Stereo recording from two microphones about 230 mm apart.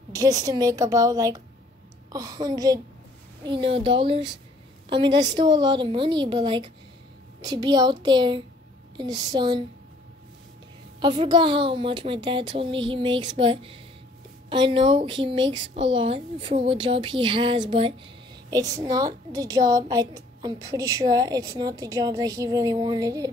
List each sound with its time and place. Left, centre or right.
0.1 s a woman's voice: centre
11.0 s a woman's voice: right